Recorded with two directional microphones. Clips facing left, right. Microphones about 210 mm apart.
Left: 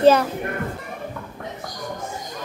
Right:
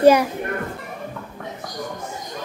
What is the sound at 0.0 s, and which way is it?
Speech, 10° right (ahead or behind).